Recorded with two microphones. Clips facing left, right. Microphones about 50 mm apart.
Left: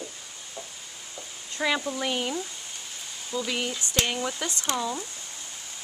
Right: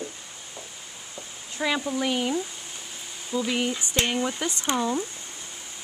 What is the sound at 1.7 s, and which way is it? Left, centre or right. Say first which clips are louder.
Speech: right 3 dB; centre.